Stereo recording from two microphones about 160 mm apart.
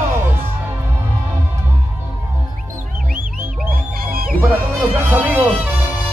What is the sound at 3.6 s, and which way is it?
Music, 65° right (ahead or behind).